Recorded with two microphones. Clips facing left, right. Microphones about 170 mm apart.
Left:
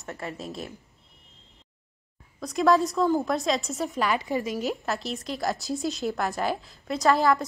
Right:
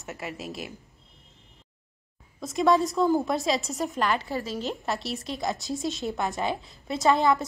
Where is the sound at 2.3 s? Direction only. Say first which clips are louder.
Left 1 dB; centre (ahead or behind).